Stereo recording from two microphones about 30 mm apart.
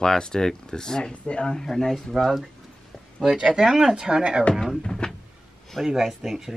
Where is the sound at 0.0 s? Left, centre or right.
Left.